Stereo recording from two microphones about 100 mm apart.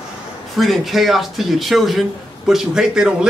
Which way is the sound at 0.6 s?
Centre (ahead or behind).